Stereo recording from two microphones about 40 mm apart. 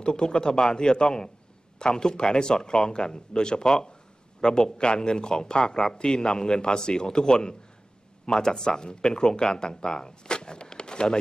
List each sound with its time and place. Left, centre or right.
0.0 s speech: left